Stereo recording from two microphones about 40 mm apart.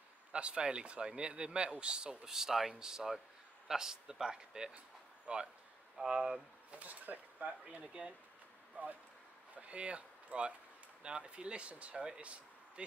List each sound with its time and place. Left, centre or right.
0.3 s speech: right
6.7 s speech: right
7.8 s speech: right
8.8 s speech: right
12.2 s a sound: right